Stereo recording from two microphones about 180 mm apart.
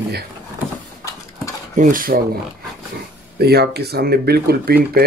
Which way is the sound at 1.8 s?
50° right (ahead or behind).